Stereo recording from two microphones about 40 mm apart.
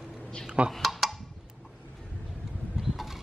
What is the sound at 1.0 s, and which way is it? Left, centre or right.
Tick-tock, centre.